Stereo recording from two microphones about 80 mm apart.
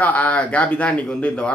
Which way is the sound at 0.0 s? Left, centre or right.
Centre.